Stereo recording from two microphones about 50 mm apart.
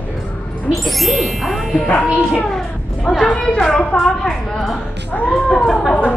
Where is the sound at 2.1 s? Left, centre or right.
Left.